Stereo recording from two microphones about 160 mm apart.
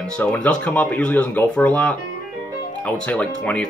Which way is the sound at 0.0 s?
10° left (ahead or behind).